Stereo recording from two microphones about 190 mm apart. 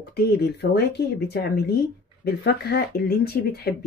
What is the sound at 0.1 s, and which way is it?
Speech, 55° left (ahead or behind).